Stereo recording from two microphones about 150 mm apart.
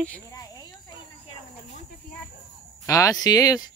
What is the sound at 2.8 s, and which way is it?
Speech, 20° left (ahead or behind).